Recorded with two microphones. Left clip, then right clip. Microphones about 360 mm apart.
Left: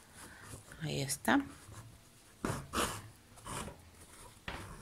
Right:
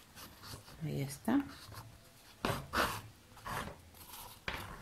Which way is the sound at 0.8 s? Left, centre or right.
Left.